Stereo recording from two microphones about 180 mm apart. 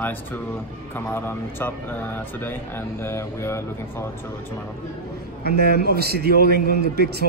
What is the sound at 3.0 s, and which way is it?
Speech, 15° left (ahead or behind).